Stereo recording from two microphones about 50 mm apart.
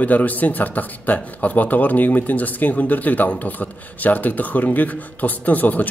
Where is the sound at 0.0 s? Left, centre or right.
Left.